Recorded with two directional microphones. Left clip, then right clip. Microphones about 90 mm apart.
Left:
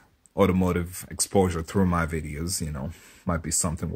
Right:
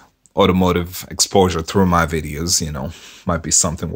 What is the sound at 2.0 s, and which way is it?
Speech, 35° right (ahead or behind).